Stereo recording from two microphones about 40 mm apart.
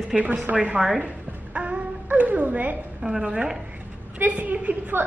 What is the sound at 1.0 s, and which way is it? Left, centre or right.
Music, right.